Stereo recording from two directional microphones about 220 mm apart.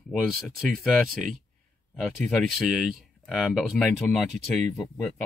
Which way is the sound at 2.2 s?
Centre (ahead or behind).